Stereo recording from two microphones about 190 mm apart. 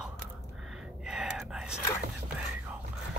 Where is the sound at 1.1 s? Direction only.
Centre (ahead or behind).